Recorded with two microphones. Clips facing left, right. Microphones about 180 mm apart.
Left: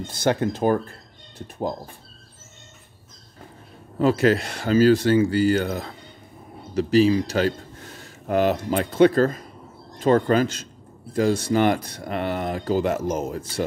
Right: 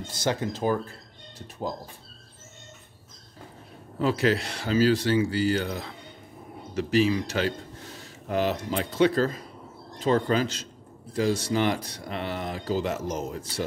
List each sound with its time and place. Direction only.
0.0 s speech: 55° left (ahead or behind)
4.0 s speech: 50° left (ahead or behind)
6.7 s speech: 35° left (ahead or behind); by 13.7 s 50° left (ahead or behind)